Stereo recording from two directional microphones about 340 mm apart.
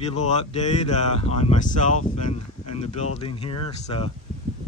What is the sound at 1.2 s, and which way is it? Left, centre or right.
Speech, centre.